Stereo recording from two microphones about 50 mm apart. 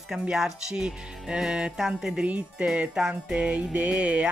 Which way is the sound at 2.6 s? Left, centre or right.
Centre.